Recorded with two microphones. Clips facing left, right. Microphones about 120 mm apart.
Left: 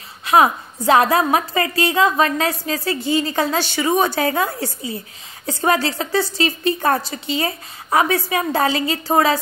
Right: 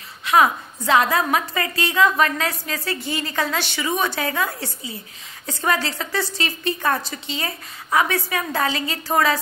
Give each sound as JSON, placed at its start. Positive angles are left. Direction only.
{"t": 0.2, "sound": "a woman's voice", "side_deg": 35}